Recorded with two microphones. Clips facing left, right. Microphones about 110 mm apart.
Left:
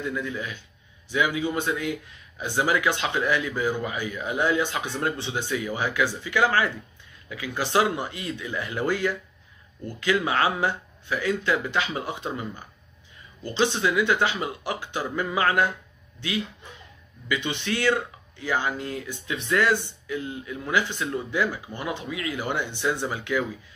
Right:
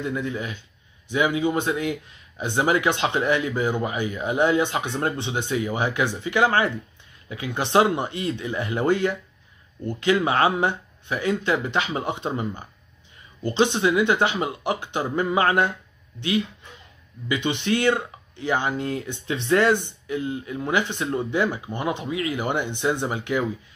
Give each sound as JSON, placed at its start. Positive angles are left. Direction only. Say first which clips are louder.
{"t": 0.0, "sound": "speech", "louder": "right 2 dB", "side_deg": -25}
{"t": 17.3, "sound": "speech", "louder": "right 4 dB", "side_deg": -20}